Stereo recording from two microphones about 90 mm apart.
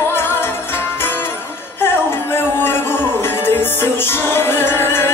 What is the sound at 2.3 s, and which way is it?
Music, 25° left (ahead or behind).